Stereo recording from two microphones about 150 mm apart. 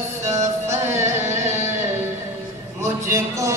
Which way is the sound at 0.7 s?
15° right (ahead or behind).